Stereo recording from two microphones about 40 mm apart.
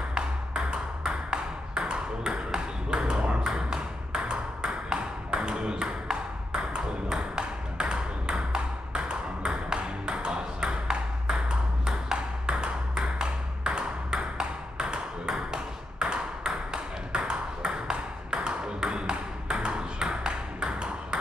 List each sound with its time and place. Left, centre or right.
0.7 s ping: right